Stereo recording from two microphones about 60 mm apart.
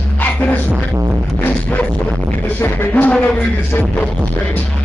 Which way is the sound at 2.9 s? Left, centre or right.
Left.